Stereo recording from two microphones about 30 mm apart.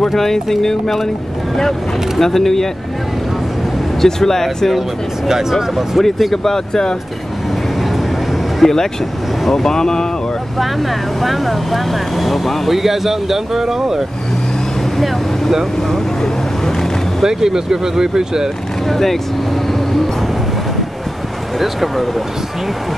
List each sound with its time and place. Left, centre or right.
0.0 s speech: centre
2.1 s speech: centre
4.0 s speech: centre
5.3 s speech: centre
6.3 s speech: centre
8.6 s speech: centre
9.5 s speech: centre
11.1 s speech: centre
17.2 s speech: centre
18.9 s speech: centre